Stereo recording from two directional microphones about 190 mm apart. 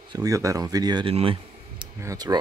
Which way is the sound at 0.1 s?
15° right (ahead or behind).